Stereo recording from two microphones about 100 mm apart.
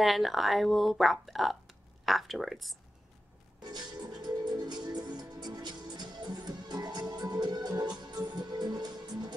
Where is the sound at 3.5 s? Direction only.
45° right (ahead or behind).